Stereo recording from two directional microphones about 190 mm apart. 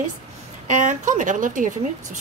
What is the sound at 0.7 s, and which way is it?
Speech, 40° right (ahead or behind).